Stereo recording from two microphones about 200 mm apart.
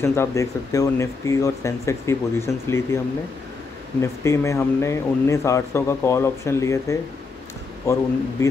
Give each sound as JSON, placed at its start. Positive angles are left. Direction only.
{"t": 0.0, "sound": "speech", "side_deg": 15}
{"t": 4.0, "sound": "speech", "side_deg": 15}